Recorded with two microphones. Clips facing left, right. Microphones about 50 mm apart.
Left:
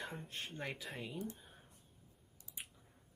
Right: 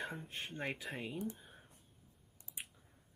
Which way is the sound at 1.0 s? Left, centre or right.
Right.